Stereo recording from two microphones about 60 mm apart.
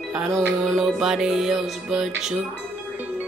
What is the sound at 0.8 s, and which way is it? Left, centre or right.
Music, centre.